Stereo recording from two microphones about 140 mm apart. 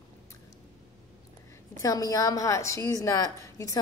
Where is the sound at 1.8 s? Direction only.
25° left (ahead or behind).